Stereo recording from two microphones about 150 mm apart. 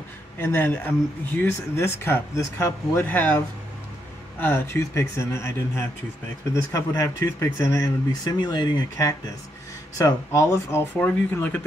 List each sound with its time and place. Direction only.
0.4 s speech: 15° left (ahead or behind)